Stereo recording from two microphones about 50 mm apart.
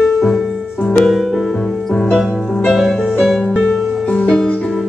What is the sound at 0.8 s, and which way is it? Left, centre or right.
Music, left.